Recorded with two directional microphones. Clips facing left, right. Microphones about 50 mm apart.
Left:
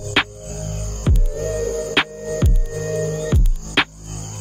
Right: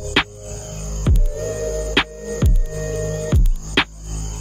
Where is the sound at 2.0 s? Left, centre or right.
Centre.